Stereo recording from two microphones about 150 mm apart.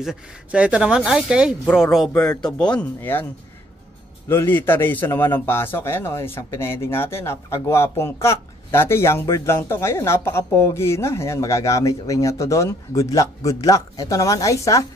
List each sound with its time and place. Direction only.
0.0 s a man's voice: 5° right (ahead or behind); by 3.3 s 15° left (ahead or behind)
4.3 s a man's voice: 15° left (ahead or behind)